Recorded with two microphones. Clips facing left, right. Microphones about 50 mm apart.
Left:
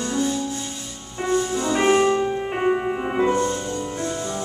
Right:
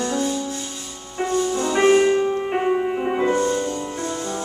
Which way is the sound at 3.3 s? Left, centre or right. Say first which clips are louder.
Right 2 dB; right.